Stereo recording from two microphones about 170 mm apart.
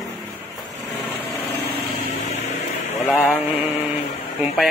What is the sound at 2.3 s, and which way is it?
Music, 40° left (ahead or behind).